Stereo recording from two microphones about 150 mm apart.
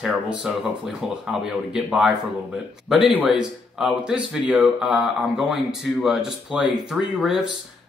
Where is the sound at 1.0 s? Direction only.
5° right (ahead or behind).